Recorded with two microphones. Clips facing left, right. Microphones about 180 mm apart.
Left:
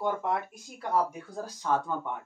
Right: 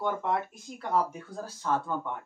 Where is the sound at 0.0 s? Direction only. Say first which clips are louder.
Even; 10° left (ahead or behind).